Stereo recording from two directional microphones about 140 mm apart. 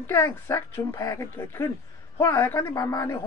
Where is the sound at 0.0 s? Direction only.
15° left (ahead or behind).